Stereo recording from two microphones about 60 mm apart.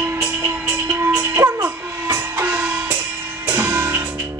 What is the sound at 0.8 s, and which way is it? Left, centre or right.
Music, right.